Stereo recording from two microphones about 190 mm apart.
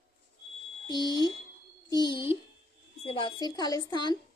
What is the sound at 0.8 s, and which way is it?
A child's voice, 20° left (ahead or behind).